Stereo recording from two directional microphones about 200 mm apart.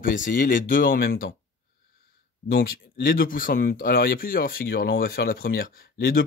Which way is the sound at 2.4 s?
50° left (ahead or behind).